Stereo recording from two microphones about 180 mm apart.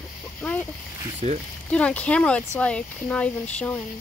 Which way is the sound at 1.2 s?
35° right (ahead or behind).